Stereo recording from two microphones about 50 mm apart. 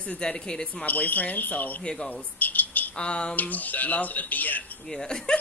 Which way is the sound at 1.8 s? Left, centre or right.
Centre.